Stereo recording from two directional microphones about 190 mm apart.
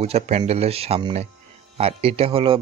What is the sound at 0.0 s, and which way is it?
A man's voice, 35° right (ahead or behind).